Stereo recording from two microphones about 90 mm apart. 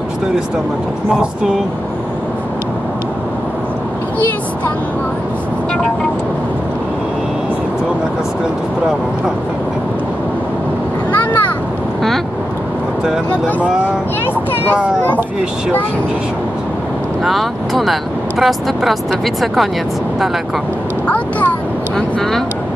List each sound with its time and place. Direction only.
11.1 s a sound: 20° left (ahead or behind)
17.2 s speech: centre (ahead or behind)
21.9 s speech: 5° left (ahead or behind)